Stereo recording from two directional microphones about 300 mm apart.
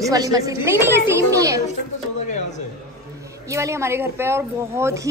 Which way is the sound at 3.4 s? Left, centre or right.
Centre.